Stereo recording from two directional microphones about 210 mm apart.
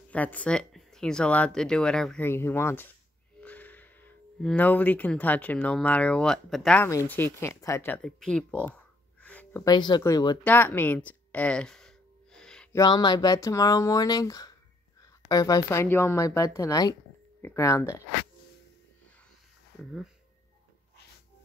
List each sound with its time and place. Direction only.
0.1 s speech: 5° left (ahead or behind)
9.2 s a sound: 5° left (ahead or behind)
9.7 s speech: 20° left (ahead or behind)
10.4 s a sound: 10° left (ahead or behind)
12.7 s speech: 20° left (ahead or behind)
19.8 s speech: centre (ahead or behind)